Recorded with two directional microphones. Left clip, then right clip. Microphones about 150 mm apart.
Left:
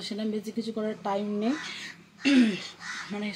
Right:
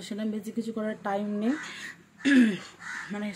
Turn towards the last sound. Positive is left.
turn(degrees=-15)  # may be behind; listen again after turning